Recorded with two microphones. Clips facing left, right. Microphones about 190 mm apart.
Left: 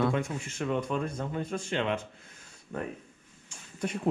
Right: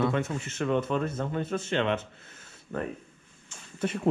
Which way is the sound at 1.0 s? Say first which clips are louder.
Right 3 dB; 5° right (ahead or behind).